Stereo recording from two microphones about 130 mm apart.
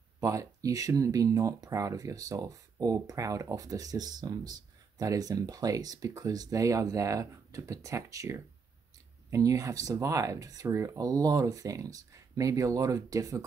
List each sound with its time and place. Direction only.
0.2 s speech: 25° right (ahead or behind)